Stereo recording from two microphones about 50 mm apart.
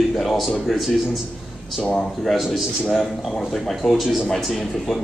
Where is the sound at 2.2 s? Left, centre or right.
Centre.